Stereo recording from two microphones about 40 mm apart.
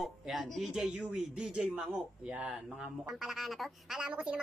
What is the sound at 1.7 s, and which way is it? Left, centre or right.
Speech, right.